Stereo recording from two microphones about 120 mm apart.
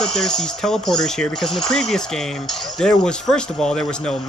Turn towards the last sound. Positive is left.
turn(degrees=5)  # may be behind; listen again after turning